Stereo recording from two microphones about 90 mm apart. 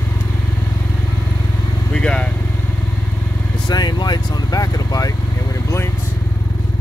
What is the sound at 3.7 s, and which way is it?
Speech, 50° left (ahead or behind).